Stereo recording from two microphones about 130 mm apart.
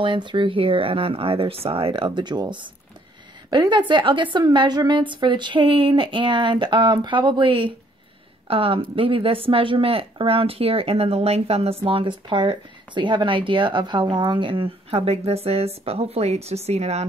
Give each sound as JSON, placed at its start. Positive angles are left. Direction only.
{"t": 0.0, "sound": "a woman's voice", "side_deg": -40}